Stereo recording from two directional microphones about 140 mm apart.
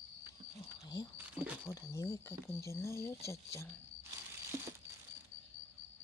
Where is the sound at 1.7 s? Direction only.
20° left (ahead or behind).